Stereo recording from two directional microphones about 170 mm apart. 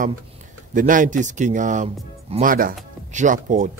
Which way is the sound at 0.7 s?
50° right (ahead or behind).